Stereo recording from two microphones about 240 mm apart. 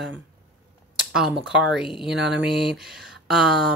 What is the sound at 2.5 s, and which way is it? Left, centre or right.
Speech, left.